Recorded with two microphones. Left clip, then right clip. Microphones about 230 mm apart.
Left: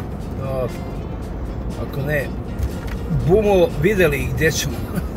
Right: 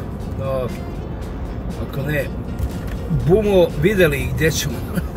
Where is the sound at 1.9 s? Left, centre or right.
Centre.